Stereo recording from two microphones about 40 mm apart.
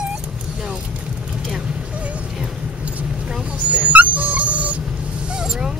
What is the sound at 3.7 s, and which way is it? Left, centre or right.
Dog, right.